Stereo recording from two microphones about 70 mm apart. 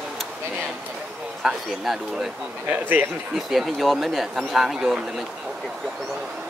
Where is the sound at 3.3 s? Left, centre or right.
Centre.